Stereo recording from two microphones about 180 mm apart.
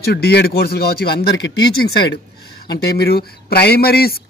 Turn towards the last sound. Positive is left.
turn(degrees=60)  # may be behind; listen again after turning